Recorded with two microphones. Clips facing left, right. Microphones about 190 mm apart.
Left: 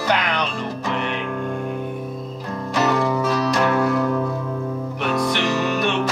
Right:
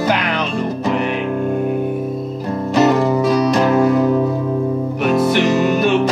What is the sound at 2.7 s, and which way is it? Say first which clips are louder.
Music: right 6 dB; 35° right (ahead or behind).